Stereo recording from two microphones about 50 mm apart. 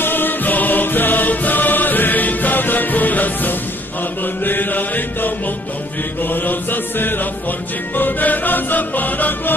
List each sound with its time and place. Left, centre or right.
0.0 s music: left
6.3 s music: left